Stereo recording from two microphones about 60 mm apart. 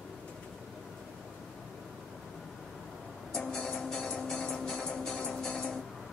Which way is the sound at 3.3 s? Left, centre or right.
Centre.